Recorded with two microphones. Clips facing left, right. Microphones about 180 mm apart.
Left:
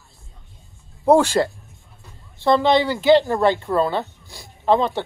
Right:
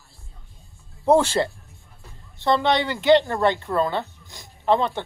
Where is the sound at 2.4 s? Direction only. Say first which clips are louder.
Left 4 dB; 10° left (ahead or behind).